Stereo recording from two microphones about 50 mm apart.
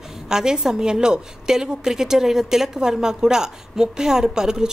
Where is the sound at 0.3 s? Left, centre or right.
Centre.